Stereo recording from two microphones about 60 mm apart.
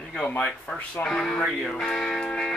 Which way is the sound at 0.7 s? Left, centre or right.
Left.